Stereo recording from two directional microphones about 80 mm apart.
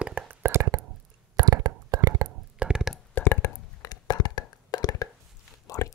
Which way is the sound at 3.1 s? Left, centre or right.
Left.